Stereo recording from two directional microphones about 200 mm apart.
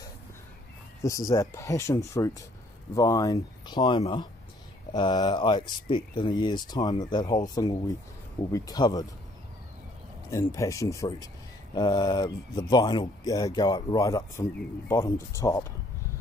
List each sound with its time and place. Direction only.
1.0 s speech: 15° left (ahead or behind)
10.3 s speech: 15° left (ahead or behind)